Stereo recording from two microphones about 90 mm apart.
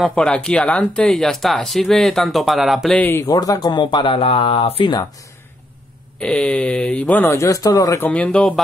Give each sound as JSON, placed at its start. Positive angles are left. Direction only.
{"t": 0.0, "sound": "speech", "side_deg": 10}
{"t": 3.3, "sound": "speech", "side_deg": 45}
{"t": 3.6, "sound": "speech", "side_deg": 55}
{"t": 6.1, "sound": "speech", "side_deg": 10}
{"t": 7.4, "sound": "speech", "side_deg": 40}
{"t": 8.0, "sound": "speech", "side_deg": 15}